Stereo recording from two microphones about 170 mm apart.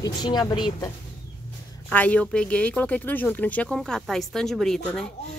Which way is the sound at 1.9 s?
10° left (ahead or behind).